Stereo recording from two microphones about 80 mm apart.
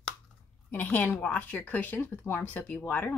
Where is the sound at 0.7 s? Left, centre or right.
Left.